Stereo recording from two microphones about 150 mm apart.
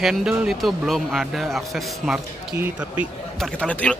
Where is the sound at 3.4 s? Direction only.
5° left (ahead or behind).